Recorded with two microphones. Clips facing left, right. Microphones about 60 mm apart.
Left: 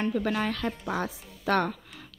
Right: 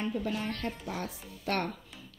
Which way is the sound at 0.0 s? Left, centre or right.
Left.